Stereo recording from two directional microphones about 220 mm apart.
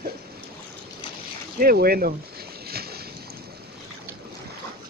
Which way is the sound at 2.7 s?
45° right (ahead or behind).